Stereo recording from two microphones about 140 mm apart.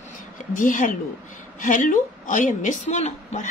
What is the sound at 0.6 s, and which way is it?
A woman's voice, 70° left (ahead or behind).